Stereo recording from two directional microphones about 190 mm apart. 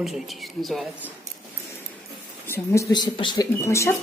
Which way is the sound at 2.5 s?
15° left (ahead or behind).